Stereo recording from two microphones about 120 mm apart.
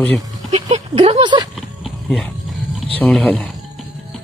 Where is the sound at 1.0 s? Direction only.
50° right (ahead or behind).